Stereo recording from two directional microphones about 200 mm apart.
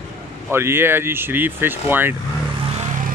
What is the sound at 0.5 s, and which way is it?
Speech, 10° right (ahead or behind).